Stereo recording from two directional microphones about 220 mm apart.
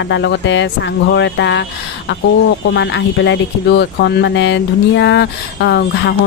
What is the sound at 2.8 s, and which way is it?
Speech, 55° left (ahead or behind).